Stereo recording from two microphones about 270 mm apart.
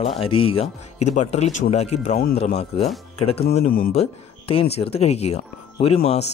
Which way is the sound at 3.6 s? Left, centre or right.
Left.